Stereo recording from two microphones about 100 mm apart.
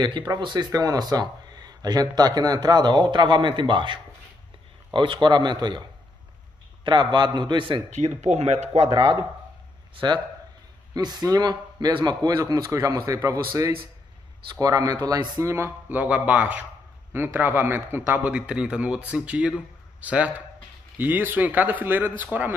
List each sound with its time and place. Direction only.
0.4 s speech: 45° right (ahead or behind)
8.3 s speech: 90° right
8.9 s a man's voice: 55° right (ahead or behind); by 22.6 s 15° right (ahead or behind)